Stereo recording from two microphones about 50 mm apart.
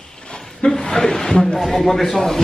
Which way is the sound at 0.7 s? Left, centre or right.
Centre.